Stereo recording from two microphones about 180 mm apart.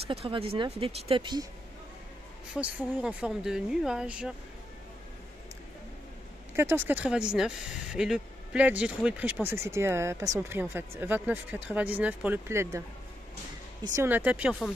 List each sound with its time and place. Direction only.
0.1 s speech: 30° right (ahead or behind)
2.5 s speech: 5° right (ahead or behind)
6.5 s speech: 15° right (ahead or behind)
13.8 s speech: 15° right (ahead or behind)